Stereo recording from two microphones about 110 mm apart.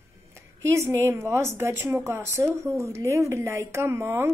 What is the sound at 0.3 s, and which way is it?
A woman's voice, 25° right (ahead or behind).